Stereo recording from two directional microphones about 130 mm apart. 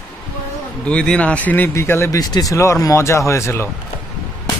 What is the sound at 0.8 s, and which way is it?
Speech, 5° left (ahead or behind).